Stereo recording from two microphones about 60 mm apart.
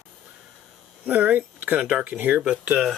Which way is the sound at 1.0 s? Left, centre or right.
Right.